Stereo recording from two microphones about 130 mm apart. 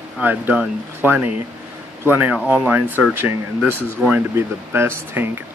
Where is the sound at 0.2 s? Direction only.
15° right (ahead or behind).